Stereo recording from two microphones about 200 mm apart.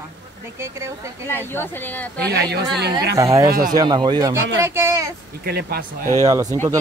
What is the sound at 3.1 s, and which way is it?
Speech, 15° right (ahead or behind).